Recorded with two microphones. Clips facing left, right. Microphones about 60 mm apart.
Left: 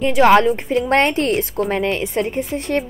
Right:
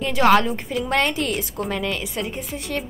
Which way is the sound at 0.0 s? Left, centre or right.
Left.